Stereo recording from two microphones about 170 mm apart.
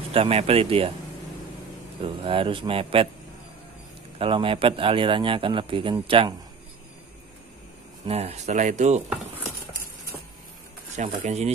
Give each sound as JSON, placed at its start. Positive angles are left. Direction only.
{"t": 0.1, "sound": "a man's voice", "side_deg": -35}
{"t": 2.2, "sound": "a man's voice", "side_deg": -30}
{"t": 4.2, "sound": "a man's voice", "side_deg": -30}
{"t": 8.1, "sound": "speech", "side_deg": -40}
{"t": 11.0, "sound": "speech", "side_deg": -45}